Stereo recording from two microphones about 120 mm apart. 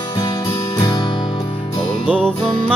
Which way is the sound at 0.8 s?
40° left (ahead or behind).